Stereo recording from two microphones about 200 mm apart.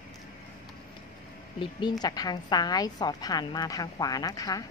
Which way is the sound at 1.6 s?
20° left (ahead or behind).